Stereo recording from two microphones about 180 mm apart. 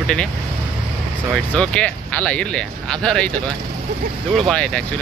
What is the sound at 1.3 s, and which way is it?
A man's voice, 5° left (ahead or behind).